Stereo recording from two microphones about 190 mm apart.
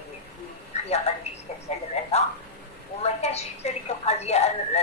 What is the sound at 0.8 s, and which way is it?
Speech, 35° left (ahead or behind).